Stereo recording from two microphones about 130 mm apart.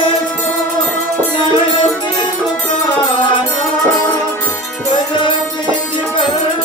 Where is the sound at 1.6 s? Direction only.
35° left (ahead or behind).